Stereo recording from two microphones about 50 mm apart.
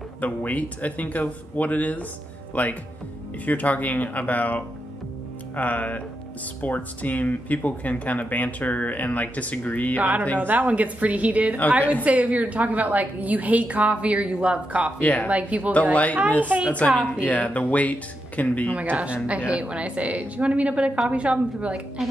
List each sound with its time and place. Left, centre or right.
0.2 s speech: left
9.9 s a woman's voice: right
15.0 s speech: left
15.2 s a woman's voice: right
15.7 s a woman's voice: left
16.4 s a woman's voice: right
17.2 s speech: left
18.7 s a woman's voice: right